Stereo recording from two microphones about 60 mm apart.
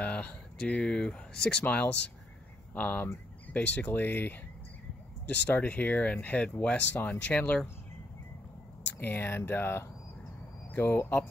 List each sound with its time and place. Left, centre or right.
0.0 s speech: left
2.7 s speech: left
3.9 s speech: left
9.0 s speech: left